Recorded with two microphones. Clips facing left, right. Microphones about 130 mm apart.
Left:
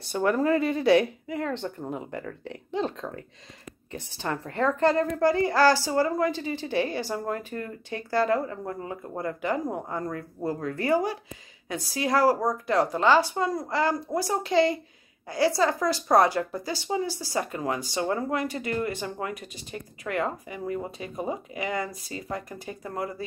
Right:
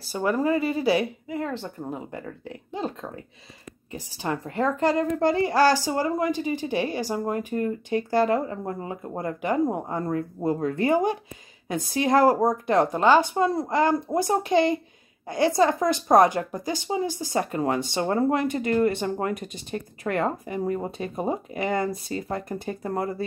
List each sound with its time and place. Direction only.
0.0 s a woman's voice: 5° right (ahead or behind); by 17.5 s 20° right (ahead or behind)
17.5 s speech: 30° right (ahead or behind)